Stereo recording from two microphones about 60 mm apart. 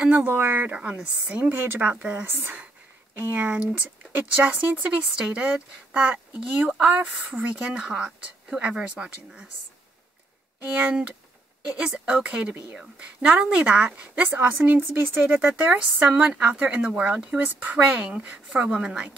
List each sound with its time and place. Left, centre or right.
0.1 s a woman's voice: right
0.7 s speech: centre
1.5 s a woman's voice: right
2.2 s a woman's voice: right; by 9.5 s centre
10.7 s a woman's voice: right